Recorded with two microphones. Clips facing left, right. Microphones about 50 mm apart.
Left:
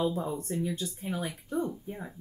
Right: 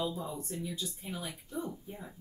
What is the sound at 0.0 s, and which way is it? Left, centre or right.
Speech, left.